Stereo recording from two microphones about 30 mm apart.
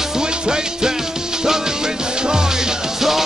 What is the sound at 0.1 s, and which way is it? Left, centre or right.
Music, right.